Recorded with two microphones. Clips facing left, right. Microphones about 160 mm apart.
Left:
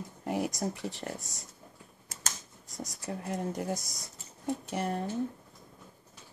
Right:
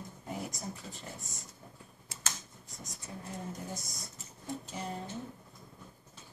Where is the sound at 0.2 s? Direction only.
75° left (ahead or behind).